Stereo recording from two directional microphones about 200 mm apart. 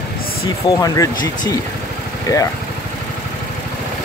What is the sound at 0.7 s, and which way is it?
Speech, 15° left (ahead or behind).